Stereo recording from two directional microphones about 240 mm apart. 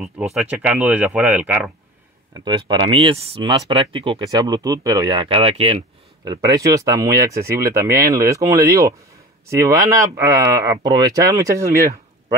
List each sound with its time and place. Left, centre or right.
0.0 s speech: centre
2.4 s speech: centre